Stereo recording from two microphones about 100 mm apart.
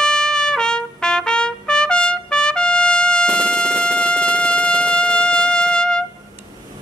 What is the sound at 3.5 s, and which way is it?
Music, 20° right (ahead or behind).